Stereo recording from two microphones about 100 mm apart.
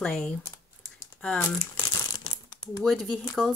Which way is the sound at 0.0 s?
5° left (ahead or behind).